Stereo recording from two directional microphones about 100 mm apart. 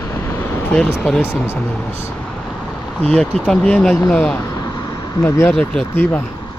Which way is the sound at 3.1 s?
10° left (ahead or behind).